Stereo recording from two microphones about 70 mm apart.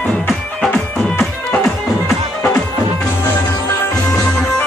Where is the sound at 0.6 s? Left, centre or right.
Centre.